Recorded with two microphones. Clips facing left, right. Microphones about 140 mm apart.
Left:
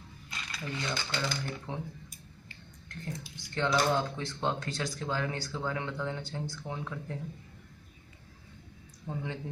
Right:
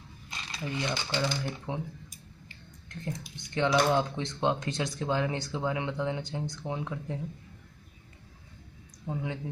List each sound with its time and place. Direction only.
0.3 s speech: 20° right (ahead or behind)
2.9 s speech: 20° right (ahead or behind)
9.0 s speech: 15° right (ahead or behind)